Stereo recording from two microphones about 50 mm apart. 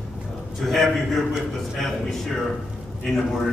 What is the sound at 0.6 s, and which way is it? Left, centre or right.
Speech, centre.